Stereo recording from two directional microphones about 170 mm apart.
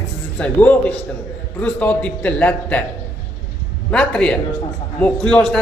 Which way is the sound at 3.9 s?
5° left (ahead or behind).